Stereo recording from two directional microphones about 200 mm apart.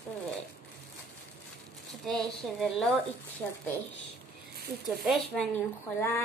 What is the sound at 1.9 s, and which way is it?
A woman's voice, centre (ahead or behind).